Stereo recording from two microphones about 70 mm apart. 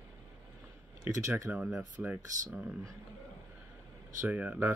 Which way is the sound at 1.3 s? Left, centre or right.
Right.